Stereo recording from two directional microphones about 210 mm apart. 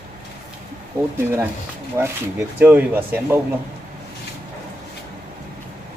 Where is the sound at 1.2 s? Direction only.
10° right (ahead or behind).